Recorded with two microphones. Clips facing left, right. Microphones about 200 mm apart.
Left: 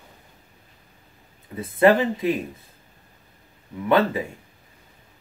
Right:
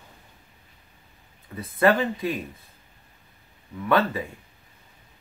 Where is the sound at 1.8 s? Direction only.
25° left (ahead or behind).